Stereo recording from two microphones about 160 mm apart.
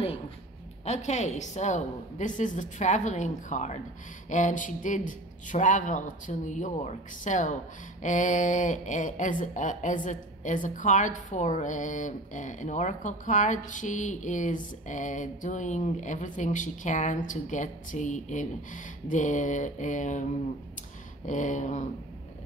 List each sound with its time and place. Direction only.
0.8 s speech: 45° left (ahead or behind)
21.3 s speech: 50° left (ahead or behind)